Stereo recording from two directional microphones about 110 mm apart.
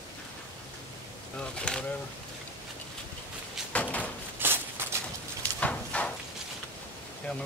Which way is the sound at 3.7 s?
10° left (ahead or behind).